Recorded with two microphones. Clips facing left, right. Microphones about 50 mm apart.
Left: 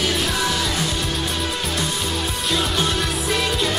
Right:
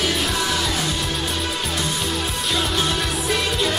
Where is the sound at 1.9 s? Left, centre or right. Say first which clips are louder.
Even; centre.